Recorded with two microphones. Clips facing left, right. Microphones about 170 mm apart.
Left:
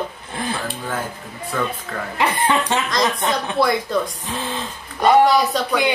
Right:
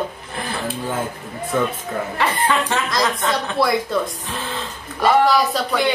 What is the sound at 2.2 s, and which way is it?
Speech, 15° left (ahead or behind).